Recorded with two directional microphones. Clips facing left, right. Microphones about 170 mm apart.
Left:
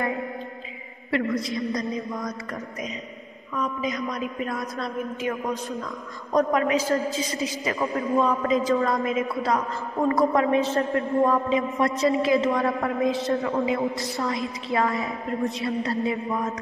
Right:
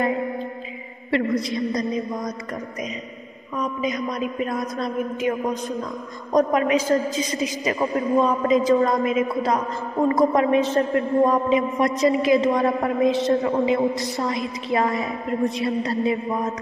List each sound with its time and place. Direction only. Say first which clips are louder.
1.5 s a woman's voice: right 3 dB; 20° right (ahead or behind)
3.5 s a woman's voice: right 2 dB; 20° right (ahead or behind)